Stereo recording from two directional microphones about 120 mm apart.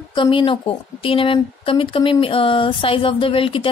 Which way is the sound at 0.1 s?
45° left (ahead or behind).